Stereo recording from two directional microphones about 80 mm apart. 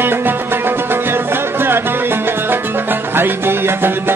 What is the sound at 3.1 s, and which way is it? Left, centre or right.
Music, right.